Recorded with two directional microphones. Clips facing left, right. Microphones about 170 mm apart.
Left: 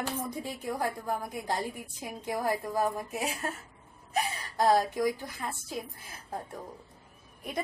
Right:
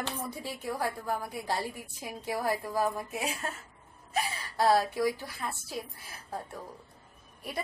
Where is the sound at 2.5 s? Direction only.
20° left (ahead or behind).